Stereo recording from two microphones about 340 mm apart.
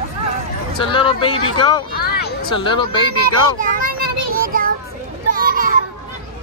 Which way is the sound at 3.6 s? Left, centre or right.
Right.